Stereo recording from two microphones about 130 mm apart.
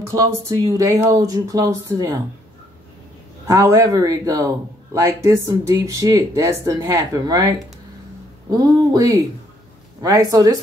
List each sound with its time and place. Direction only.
0.1 s a man's voice: 25° right (ahead or behind)
3.4 s a man's voice: 25° right (ahead or behind)